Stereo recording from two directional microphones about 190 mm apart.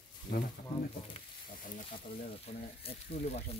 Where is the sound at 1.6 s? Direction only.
45° left (ahead or behind).